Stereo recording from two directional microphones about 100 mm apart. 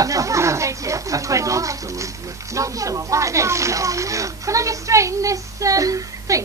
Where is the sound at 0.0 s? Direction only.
35° right (ahead or behind).